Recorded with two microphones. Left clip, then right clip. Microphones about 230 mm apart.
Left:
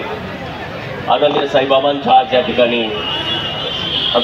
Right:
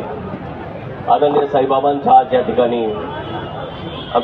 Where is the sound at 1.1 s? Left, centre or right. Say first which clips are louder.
Even; left.